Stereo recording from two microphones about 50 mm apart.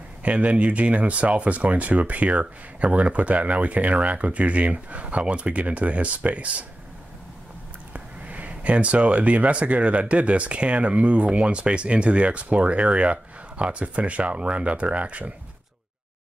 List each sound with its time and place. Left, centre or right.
0.2 s speech: right
7.9 s speech: right